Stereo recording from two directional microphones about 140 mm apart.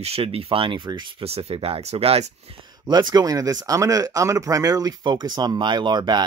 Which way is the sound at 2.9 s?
30° right (ahead or behind).